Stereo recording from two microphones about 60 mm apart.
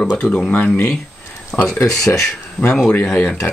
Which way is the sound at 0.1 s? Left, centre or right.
Left.